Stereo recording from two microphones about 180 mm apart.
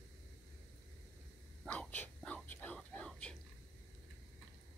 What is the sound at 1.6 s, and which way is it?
Whispering, 10° left (ahead or behind).